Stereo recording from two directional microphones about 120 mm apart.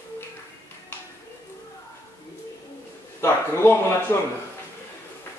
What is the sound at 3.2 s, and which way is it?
Speech, 20° left (ahead or behind).